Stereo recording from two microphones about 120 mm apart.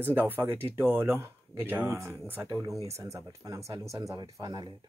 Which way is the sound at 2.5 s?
30° right (ahead or behind).